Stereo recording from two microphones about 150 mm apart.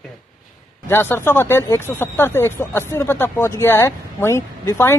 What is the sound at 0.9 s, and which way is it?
Speech, 15° left (ahead or behind).